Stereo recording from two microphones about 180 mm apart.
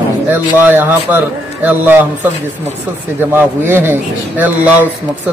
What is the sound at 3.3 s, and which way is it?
A man's voice, 10° right (ahead or behind).